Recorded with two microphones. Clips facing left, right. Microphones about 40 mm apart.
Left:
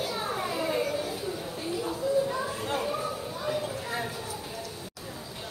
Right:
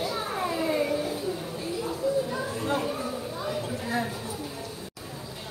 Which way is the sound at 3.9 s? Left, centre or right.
Right.